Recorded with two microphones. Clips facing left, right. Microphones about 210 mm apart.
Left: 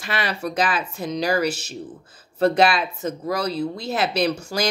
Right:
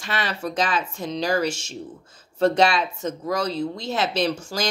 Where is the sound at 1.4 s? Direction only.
35° left (ahead or behind).